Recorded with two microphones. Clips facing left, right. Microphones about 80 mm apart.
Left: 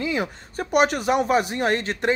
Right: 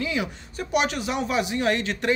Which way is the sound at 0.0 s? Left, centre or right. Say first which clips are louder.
Left 2 dB; left.